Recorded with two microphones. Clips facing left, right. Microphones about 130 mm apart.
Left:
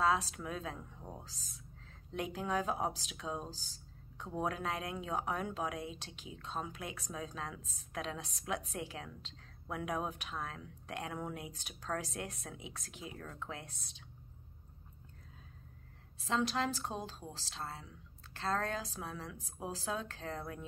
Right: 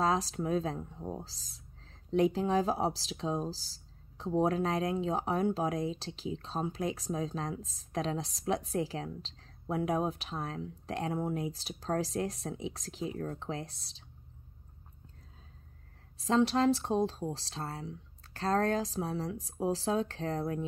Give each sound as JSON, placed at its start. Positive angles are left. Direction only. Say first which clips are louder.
{"t": 0.0, "sound": "speech", "louder": "right 3 dB", "side_deg": -35}
{"t": 16.2, "sound": "speech", "louder": "right 7 dB", "side_deg": -35}